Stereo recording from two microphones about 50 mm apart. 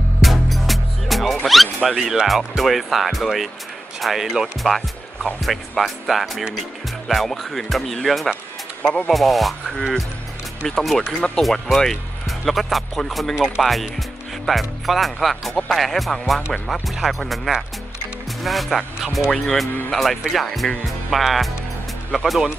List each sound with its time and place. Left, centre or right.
0.2 s music: centre
1.9 s speech: centre
8.8 s speech: left
9.1 s speech: centre
10.7 s speech: centre
11.1 s speech: left
11.4 s speech: centre